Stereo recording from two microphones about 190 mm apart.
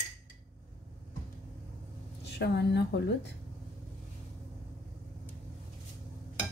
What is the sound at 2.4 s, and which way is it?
Speech, 60° left (ahead or behind).